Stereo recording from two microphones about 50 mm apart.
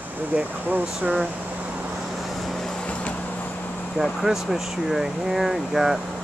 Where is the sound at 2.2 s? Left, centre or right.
Centre.